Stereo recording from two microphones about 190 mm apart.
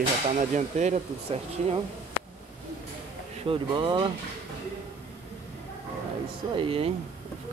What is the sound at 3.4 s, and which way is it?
Speech, 25° right (ahead or behind).